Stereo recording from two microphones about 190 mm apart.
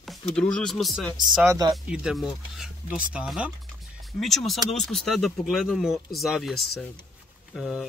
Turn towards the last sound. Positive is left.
turn(degrees=0)  # may be behind; listen again after turning